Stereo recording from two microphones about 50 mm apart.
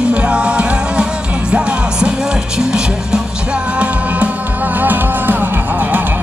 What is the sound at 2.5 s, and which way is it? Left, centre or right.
Music, centre.